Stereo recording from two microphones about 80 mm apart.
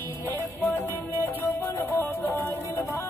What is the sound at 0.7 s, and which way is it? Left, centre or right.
Music, left.